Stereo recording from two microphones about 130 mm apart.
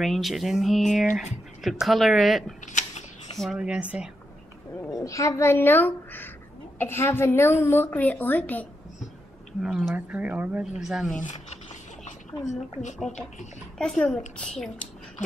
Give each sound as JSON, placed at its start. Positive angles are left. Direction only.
{"t": 0.0, "sound": "speech", "side_deg": 0}
{"t": 2.6, "sound": "a sound", "side_deg": 65}
{"t": 3.3, "sound": "speech", "side_deg": -5}
{"t": 4.9, "sound": "a woman's voice", "side_deg": 25}
{"t": 9.6, "sound": "speech", "side_deg": -5}
{"t": 11.2, "sound": "a sound", "side_deg": 65}
{"t": 13.7, "sound": "speech", "side_deg": 5}